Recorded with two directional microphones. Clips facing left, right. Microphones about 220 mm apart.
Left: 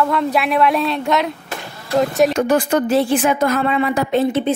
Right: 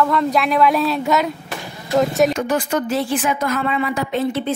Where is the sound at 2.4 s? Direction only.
60° left (ahead or behind).